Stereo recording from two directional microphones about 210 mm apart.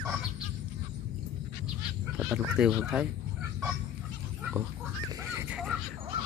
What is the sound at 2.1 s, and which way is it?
Speech, 5° right (ahead or behind).